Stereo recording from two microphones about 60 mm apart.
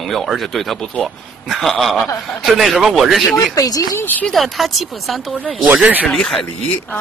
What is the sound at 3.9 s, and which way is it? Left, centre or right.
Speech, left.